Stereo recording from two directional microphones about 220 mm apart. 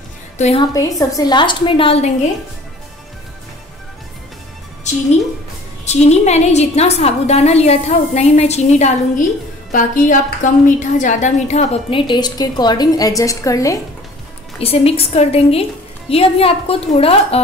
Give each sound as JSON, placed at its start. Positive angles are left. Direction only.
{"t": 0.4, "sound": "a woman's voice", "side_deg": 30}
{"t": 0.7, "sound": "a woman's voice", "side_deg": 15}
{"t": 5.9, "sound": "a woman's voice", "side_deg": 30}
{"t": 14.6, "sound": "a woman's voice", "side_deg": 25}